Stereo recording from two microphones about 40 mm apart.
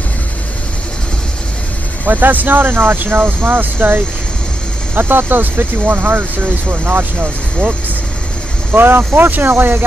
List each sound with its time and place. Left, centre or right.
2.0 s speech: right
8.7 s speech: right